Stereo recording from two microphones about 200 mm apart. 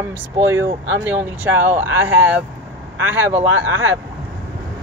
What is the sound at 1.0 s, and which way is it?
Speech, 10° right (ahead or behind).